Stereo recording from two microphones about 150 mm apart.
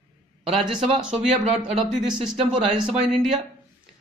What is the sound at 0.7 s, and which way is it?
Speech, 5° right (ahead or behind).